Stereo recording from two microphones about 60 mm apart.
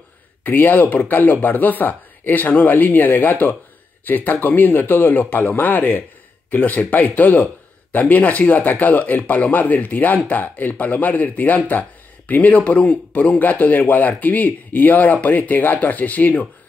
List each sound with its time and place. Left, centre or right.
0.4 s speech: left